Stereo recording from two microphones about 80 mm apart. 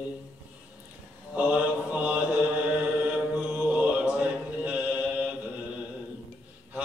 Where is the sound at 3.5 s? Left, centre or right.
Centre.